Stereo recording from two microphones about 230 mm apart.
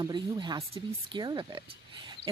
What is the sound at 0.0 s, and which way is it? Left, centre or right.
Speech, centre.